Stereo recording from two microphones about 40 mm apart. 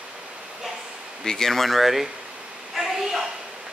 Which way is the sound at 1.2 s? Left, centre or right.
Centre.